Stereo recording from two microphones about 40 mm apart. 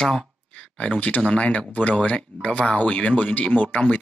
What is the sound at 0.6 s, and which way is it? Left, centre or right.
Speech, left.